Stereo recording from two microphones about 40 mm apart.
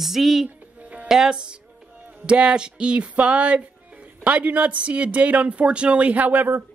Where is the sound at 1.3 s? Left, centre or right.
Right.